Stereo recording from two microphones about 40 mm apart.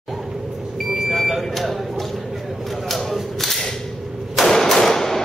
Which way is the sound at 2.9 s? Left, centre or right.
Centre.